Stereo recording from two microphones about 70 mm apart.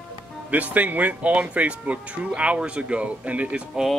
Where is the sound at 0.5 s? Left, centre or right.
Right.